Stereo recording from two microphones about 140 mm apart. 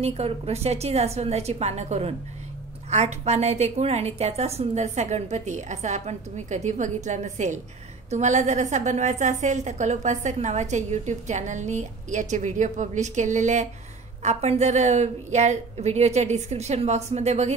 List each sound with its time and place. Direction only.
0.0 s a woman's voice: 50° right (ahead or behind)